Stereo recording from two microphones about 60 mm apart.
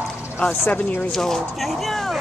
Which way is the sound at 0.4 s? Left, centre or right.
Left.